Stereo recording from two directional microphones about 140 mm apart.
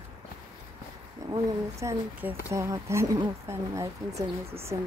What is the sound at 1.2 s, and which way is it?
Speech, 25° right (ahead or behind).